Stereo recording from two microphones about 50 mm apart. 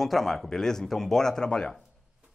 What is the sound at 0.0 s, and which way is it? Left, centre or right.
Speech, centre.